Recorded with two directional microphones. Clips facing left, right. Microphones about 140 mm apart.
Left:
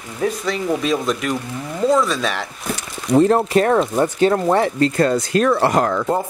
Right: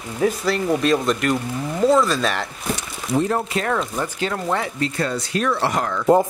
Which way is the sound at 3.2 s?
40° left (ahead or behind).